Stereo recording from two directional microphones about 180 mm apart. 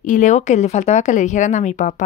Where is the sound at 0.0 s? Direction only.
45° left (ahead or behind).